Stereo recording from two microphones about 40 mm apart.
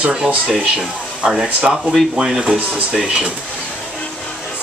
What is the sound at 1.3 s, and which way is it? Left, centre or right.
Speech, centre.